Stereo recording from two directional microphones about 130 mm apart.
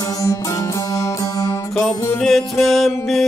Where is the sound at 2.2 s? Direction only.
Centre (ahead or behind).